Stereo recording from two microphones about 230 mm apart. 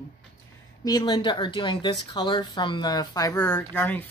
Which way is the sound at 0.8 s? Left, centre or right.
Centre.